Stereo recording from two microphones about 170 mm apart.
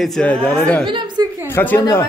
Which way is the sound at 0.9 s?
30° right (ahead or behind).